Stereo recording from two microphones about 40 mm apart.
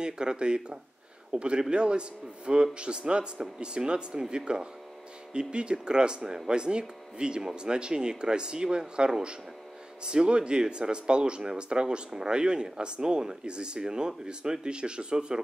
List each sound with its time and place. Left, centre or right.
0.0 s speech: right